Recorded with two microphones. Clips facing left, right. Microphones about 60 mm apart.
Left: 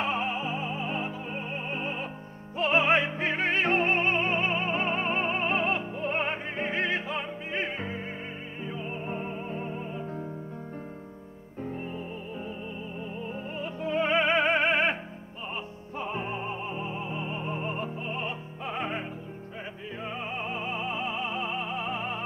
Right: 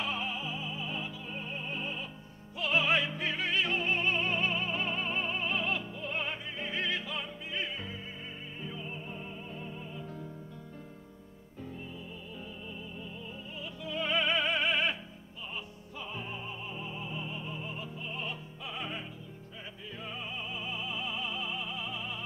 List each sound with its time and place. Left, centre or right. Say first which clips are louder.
0.0 s music: left 6 dB; left
13.6 s music: left 8 dB; left
16.0 s music: left 8 dB; left
20.3 s music: left 7 dB; left